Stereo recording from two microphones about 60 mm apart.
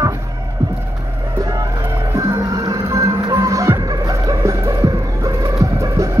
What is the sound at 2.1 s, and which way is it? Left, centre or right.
Music, right.